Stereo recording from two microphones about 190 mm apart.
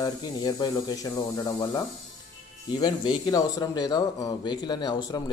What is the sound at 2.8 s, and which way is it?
A man's voice, 25° left (ahead or behind).